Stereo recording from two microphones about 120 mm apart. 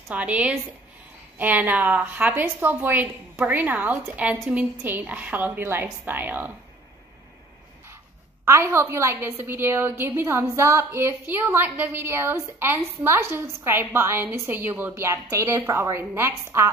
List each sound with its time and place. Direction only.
0.1 s a woman's voice: 10° right (ahead or behind)
8.5 s a woman's voice: 20° right (ahead or behind)